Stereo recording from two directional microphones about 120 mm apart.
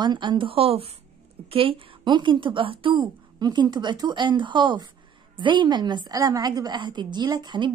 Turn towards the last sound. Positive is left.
turn(degrees=-35)  # may be behind; listen again after turning